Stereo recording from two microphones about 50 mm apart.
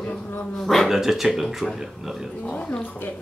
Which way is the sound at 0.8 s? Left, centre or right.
Centre.